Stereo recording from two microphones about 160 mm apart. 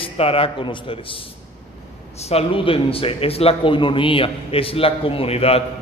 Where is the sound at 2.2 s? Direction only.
35° left (ahead or behind).